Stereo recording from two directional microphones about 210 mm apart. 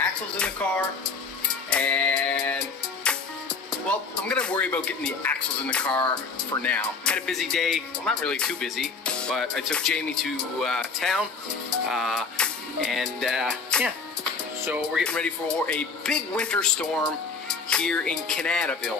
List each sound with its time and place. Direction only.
0.0 s music: 5° left (ahead or behind)
3.8 s speech: 5° left (ahead or behind)
11.9 s music: centre (ahead or behind)
14.6 s speech: 10° right (ahead or behind)
15.0 s speech: 5° left (ahead or behind)